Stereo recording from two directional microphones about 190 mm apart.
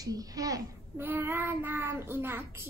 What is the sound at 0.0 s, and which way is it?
A child's voice, 20° right (ahead or behind).